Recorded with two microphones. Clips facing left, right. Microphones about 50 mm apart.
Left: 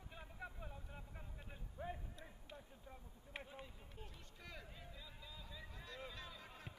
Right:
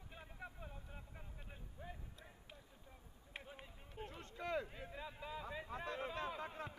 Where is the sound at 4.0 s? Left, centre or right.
Right.